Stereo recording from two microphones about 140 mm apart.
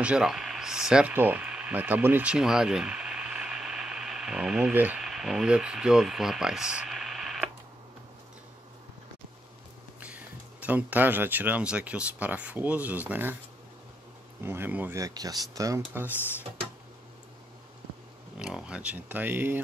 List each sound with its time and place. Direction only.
0.0 s speech: 5° right (ahead or behind)
9.9 s speech: 10° right (ahead or behind)
14.4 s speech: 15° right (ahead or behind)
18.4 s speech: 5° right (ahead or behind)